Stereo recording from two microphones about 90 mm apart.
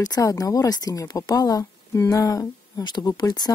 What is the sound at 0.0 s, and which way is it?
Speech, 40° left (ahead or behind).